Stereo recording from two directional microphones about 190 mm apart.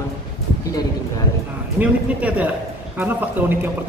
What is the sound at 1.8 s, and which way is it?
Speech, 5° right (ahead or behind).